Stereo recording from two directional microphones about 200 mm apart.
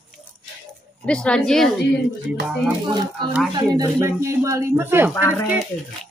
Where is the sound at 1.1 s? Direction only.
5° left (ahead or behind).